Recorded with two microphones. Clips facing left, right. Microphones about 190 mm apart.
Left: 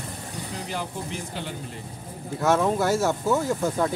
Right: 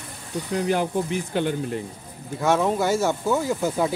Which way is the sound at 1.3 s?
55° right (ahead or behind).